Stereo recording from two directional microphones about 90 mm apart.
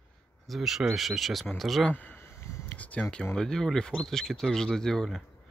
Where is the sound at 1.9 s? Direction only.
20° left (ahead or behind).